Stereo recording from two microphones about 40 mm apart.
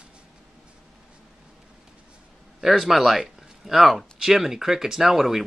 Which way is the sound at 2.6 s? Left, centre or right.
Centre.